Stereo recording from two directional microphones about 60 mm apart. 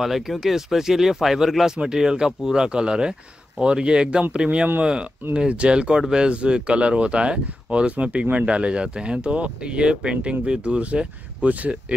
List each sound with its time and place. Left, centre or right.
0.0 s speech: centre; by 11.8 s right